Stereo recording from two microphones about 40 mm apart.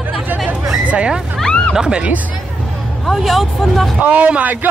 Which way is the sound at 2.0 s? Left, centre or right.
Right.